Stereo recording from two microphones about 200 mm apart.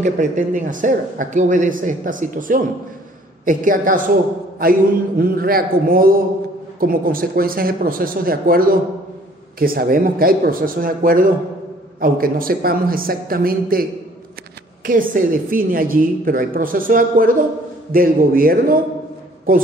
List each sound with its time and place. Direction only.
0.0 s a woman's voice: 35° right (ahead or behind)
14.9 s a woman's voice: 45° right (ahead or behind)